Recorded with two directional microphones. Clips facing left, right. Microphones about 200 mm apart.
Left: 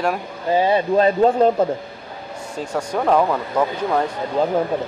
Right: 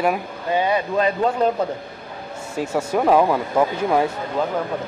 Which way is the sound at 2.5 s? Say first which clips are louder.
Right 2 dB; 5° right (ahead or behind).